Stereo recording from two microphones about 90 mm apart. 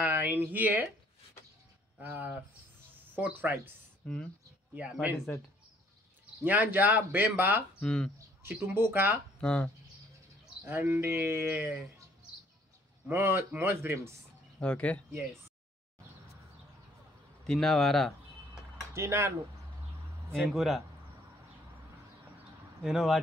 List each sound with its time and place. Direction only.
0.0 s speech: 20° right (ahead or behind)
2.0 s speech: 20° right (ahead or behind)
4.0 s speech: 10° left (ahead or behind)
6.4 s speech: 20° right (ahead or behind)
7.8 s speech: 10° left (ahead or behind)
8.4 s speech: 25° right (ahead or behind)
9.4 s speech: 10° left (ahead or behind)
10.6 s speech: 25° right (ahead or behind)
13.1 s speech: 25° right (ahead or behind)
14.6 s speech: 15° left (ahead or behind)
17.5 s speech: 5° left (ahead or behind)
18.9 s speech: 30° right (ahead or behind)
20.4 s speech: 5° right (ahead or behind)
22.8 s speech: 5° right (ahead or behind)